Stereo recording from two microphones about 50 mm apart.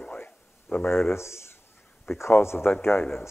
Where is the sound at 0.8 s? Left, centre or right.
Left.